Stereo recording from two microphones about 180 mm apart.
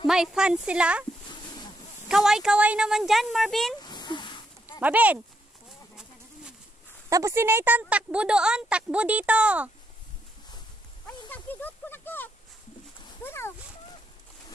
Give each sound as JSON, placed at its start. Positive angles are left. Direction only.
{"t": 0.0, "sound": "speech", "side_deg": -5}
{"t": 2.0, "sound": "speech", "side_deg": 0}
{"t": 3.8, "sound": "a sound", "side_deg": 25}
{"t": 4.7, "sound": "speech", "side_deg": -10}
{"t": 7.1, "sound": "speech", "side_deg": -20}
{"t": 11.2, "sound": "a sound", "side_deg": 10}
{"t": 13.2, "sound": "speech", "side_deg": 15}